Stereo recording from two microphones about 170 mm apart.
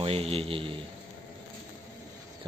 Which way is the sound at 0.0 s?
35° right (ahead or behind).